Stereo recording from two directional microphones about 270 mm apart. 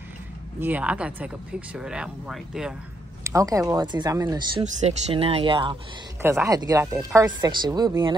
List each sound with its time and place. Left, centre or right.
0.6 s speech: centre
3.3 s speech: centre